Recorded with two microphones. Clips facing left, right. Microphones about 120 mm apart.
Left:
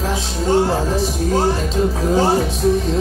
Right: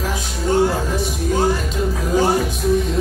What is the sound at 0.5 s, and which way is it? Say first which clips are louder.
Speech: left 1 dB; 30° left (ahead or behind).